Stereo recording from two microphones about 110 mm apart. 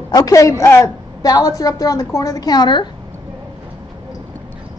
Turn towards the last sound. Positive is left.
turn(degrees=40)  # may be behind; listen again after turning